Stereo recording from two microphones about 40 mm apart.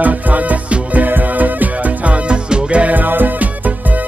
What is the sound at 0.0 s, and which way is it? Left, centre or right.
Music, right.